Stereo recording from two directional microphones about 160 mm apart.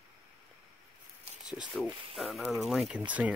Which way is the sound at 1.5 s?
5° right (ahead or behind).